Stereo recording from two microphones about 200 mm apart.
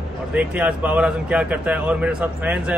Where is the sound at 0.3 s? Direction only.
5° right (ahead or behind).